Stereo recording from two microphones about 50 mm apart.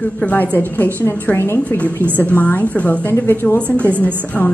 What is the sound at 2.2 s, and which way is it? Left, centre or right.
Speech, left.